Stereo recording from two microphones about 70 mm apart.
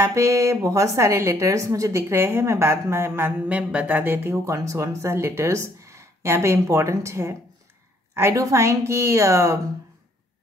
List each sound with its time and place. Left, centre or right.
0.0 s a woman's voice: right
3.4 s speech: right
4.6 s speech: right
5.1 s a woman's voice: right